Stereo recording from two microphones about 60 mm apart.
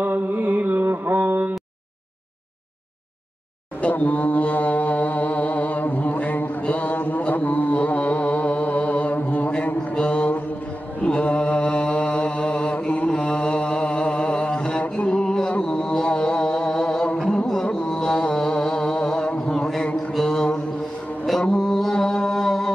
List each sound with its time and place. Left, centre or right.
0.0 s mantra: right
3.8 s mantra: left
15.5 s music: centre
18.2 s a sound: centre
19.8 s mantra: centre